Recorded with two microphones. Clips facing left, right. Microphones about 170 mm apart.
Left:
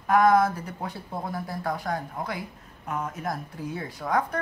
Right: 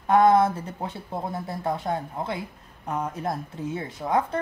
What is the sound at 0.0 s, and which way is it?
A woman's voice, 25° right (ahead or behind).